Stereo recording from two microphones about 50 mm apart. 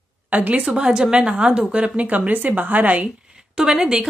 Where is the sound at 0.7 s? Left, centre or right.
Centre; by 3.1 s right.